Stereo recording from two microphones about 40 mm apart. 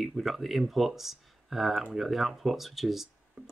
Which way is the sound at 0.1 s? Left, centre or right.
Centre.